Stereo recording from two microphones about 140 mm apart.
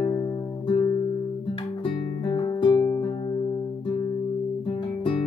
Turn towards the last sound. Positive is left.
turn(degrees=40)  # may be behind; listen again after turning